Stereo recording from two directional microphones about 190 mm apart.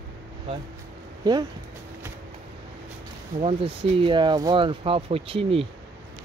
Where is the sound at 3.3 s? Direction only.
30° right (ahead or behind).